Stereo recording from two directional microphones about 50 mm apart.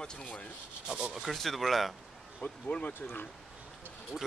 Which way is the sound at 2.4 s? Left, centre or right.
Left.